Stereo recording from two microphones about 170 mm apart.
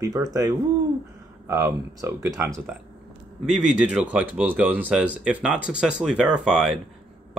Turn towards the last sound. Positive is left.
turn(degrees=-5)  # may be behind; listen again after turning